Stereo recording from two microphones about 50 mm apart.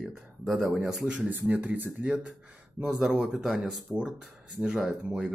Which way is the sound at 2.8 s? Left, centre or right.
Right.